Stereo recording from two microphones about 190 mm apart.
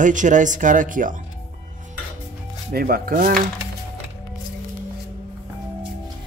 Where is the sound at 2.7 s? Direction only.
50° right (ahead or behind).